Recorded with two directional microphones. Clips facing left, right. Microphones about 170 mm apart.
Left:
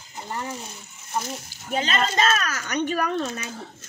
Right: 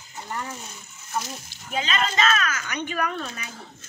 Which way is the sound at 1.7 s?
40° left (ahead or behind).